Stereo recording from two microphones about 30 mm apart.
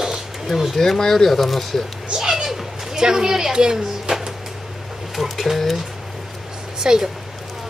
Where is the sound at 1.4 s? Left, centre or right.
Centre.